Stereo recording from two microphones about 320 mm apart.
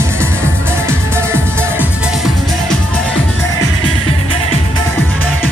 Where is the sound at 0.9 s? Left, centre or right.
Centre.